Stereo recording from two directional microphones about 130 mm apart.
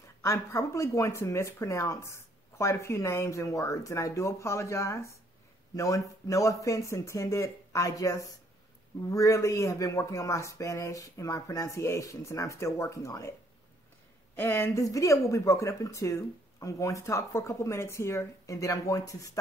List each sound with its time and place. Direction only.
0.2 s speech: 20° left (ahead or behind)
14.3 s speech: 20° left (ahead or behind)